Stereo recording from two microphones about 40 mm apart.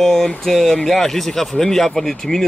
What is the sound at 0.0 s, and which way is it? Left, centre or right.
Speech, centre.